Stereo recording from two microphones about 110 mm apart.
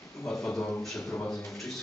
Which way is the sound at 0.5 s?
20° left (ahead or behind).